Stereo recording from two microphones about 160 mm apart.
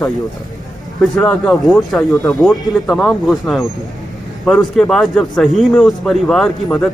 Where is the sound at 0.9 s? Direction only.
5° left (ahead or behind).